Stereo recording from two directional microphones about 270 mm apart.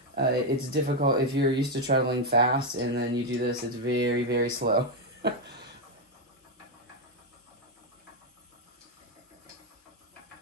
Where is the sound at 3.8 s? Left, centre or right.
Right.